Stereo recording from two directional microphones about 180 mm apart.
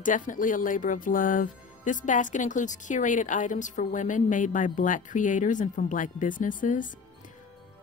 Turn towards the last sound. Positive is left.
turn(degrees=45)  # may be behind; listen again after turning